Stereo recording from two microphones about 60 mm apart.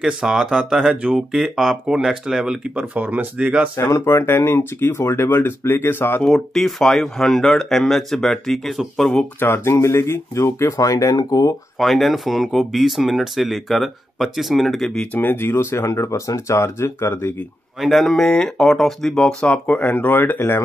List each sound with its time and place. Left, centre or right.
0.0 s speech: centre; by 3.3 s right
3.7 s speech: left
6.2 s speech: centre
9.4 s speech: left
11.8 s speech: centre
15.1 s speech: left
17.7 s speech: centre
19.6 s speech: left